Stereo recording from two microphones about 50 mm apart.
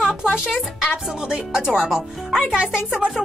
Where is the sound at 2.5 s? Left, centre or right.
Centre.